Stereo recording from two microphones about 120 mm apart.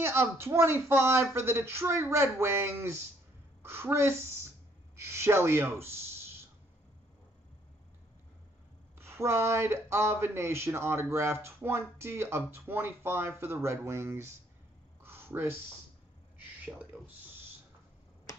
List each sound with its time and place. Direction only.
0.0 s speech: 20° right (ahead or behind)
8.9 s speech: 20° right (ahead or behind)
15.0 s a sound: 20° right (ahead or behind)
16.6 s speech: 10° right (ahead or behind)